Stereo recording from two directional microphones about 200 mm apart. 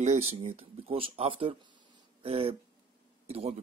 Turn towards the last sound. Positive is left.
turn(degrees=-30)  # may be behind; listen again after turning